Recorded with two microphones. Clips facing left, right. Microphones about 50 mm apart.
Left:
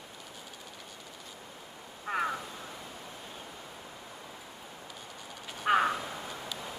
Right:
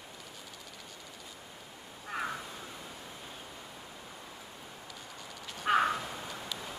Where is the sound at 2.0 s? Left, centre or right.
Centre.